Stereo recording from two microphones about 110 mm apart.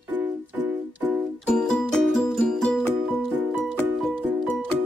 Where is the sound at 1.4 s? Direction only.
5° left (ahead or behind).